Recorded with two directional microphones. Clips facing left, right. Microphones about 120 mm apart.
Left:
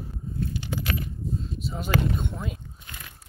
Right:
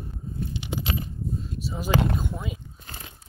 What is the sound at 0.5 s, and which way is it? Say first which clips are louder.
Coin: even; 20° right (ahead or behind).